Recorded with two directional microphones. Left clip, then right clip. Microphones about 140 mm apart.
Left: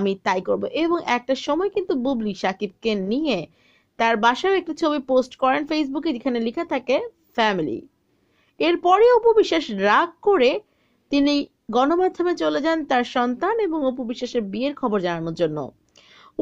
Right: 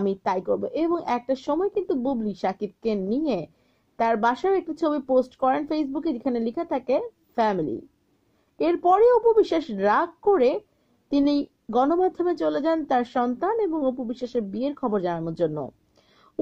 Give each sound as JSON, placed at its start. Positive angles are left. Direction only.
{"t": 0.0, "sound": "a woman's voice", "side_deg": 15}